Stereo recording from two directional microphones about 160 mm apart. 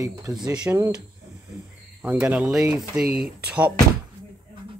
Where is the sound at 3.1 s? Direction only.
75° right (ahead or behind).